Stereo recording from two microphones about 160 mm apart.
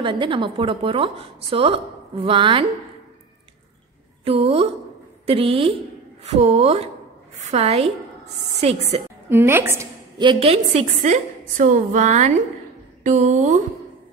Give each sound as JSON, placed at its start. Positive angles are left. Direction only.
{"t": 0.0, "sound": "a woman's voice", "side_deg": -30}
{"t": 4.2, "sound": "a woman's voice", "side_deg": -35}
{"t": 9.3, "sound": "a woman's voice", "side_deg": -15}
{"t": 10.1, "sound": "a woman's voice", "side_deg": -35}